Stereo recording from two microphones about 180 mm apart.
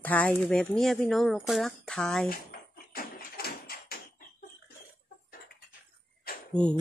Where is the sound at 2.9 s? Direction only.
55° left (ahead or behind).